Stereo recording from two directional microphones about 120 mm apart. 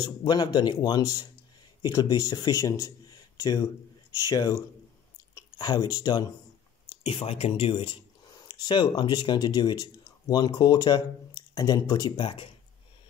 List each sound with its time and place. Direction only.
0.0 s speech: 35° left (ahead or behind)
7.0 s speech: 50° left (ahead or behind)